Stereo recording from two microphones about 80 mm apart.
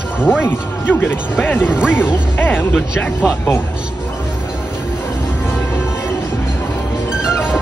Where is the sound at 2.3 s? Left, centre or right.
Left.